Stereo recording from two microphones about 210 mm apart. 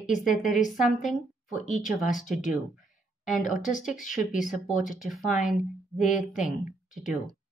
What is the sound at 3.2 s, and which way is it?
Speech, 35° left (ahead or behind).